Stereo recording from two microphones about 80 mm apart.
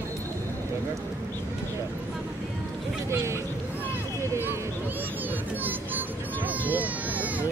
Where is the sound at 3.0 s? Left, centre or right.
Right.